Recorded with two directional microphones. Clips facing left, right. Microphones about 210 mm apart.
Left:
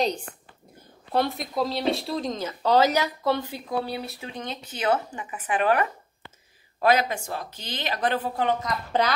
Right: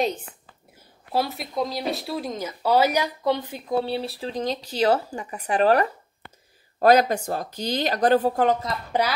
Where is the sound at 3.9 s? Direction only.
30° right (ahead or behind).